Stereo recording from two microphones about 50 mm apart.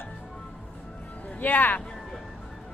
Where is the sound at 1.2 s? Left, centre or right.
Left.